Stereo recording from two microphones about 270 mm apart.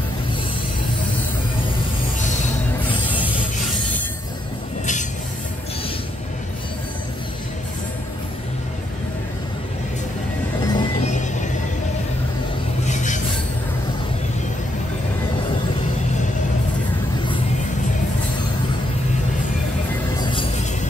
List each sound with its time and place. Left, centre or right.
10.6 s music: centre
12.8 s a sound: left
20.2 s music: centre